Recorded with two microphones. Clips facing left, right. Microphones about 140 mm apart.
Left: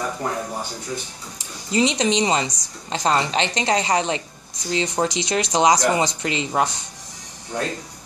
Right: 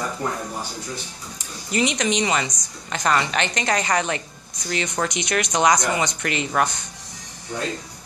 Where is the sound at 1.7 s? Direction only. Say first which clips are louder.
Left 3 dB; 25° left (ahead or behind).